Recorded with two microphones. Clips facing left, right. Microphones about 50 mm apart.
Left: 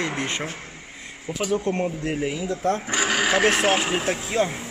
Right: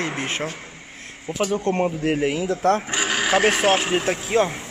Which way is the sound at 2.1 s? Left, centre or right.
Right.